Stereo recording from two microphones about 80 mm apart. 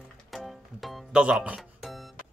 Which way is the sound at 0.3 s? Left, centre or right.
Centre.